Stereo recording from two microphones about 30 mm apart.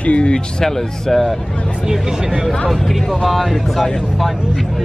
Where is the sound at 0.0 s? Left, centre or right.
Left.